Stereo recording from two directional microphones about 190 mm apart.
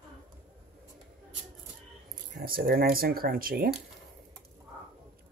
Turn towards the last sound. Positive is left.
turn(degrees=-50)  # may be behind; listen again after turning